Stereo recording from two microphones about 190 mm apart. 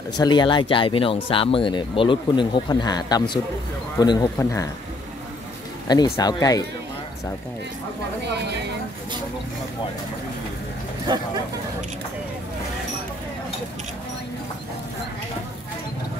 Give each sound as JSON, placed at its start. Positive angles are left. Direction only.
{"t": 0.1, "sound": "speech", "side_deg": 25}
{"t": 5.9, "sound": "speech", "side_deg": 20}